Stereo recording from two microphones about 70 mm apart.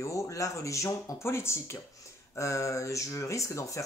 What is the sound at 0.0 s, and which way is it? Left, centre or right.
Speech, left.